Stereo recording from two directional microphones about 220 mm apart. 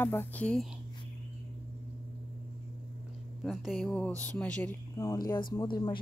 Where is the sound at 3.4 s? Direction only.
Centre (ahead or behind).